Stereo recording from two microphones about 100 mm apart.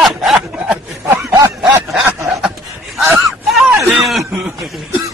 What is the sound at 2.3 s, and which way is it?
Snicker, 10° right (ahead or behind).